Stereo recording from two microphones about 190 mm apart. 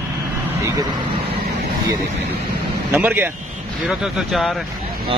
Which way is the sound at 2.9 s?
10° right (ahead or behind).